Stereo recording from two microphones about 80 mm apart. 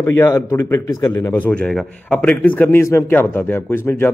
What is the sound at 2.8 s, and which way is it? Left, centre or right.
A man's voice, left.